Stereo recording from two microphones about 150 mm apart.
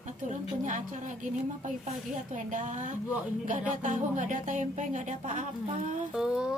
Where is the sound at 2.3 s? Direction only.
55° right (ahead or behind).